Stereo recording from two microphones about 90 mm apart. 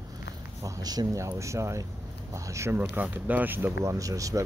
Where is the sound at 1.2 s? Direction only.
35° right (ahead or behind).